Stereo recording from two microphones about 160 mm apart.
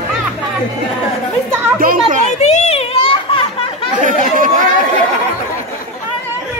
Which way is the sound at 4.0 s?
55° right (ahead or behind).